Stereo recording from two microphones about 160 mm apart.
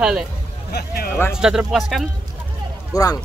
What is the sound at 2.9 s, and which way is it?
Speech, 20° left (ahead or behind).